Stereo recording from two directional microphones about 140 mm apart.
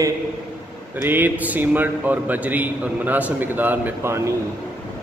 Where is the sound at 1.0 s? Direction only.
15° right (ahead or behind).